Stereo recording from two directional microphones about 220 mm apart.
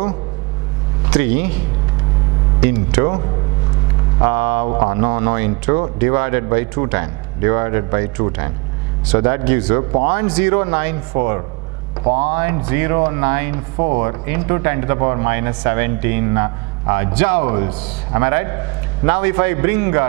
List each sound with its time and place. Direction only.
1.1 s speech: 10° right (ahead or behind)
2.6 s speech: 10° right (ahead or behind)
4.2 s speech: 15° right (ahead or behind)
12.0 s speech: 30° right (ahead or behind)
12.4 s speech: 10° right (ahead or behind)